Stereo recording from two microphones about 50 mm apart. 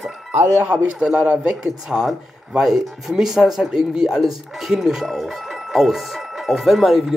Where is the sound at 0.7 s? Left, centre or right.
Right.